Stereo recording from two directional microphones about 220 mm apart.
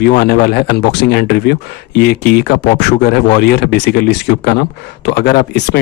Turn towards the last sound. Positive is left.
turn(degrees=45)  # may be behind; listen again after turning